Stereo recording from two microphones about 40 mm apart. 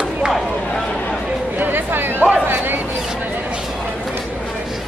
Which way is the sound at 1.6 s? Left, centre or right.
Right.